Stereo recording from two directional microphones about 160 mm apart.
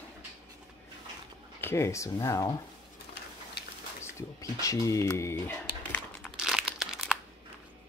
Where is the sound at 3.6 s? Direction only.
90° left.